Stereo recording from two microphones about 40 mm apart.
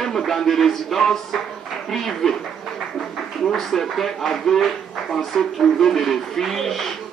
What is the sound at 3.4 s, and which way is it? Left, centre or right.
Speech, centre.